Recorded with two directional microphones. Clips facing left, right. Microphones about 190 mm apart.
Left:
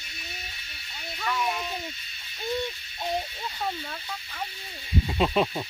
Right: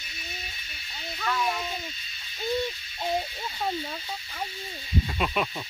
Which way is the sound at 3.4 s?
10° right (ahead or behind).